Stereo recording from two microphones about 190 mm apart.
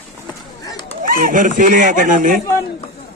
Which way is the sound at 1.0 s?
45° right (ahead or behind).